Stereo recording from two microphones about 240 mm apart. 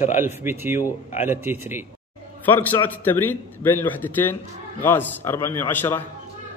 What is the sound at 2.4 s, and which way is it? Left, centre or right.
A man's voice, centre.